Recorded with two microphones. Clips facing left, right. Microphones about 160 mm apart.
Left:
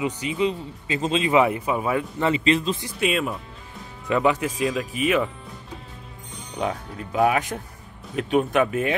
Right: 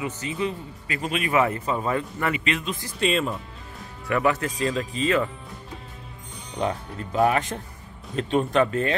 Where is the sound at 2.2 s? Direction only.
30° left (ahead or behind).